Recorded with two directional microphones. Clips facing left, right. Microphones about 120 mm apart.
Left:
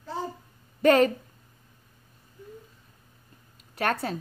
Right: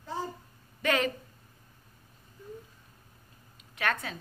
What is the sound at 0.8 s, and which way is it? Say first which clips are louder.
Speech: left 9 dB; 35° left (ahead or behind).